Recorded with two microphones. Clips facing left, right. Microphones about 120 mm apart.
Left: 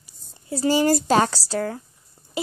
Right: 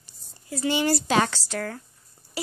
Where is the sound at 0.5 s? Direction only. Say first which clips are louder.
Left 5 dB; 35° left (ahead or behind).